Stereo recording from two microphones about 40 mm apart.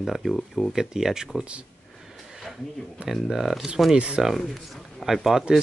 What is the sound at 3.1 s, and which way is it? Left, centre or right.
Speech, centre.